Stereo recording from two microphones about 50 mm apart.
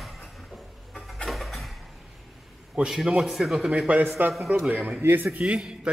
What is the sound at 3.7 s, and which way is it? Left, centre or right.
A man's voice, right.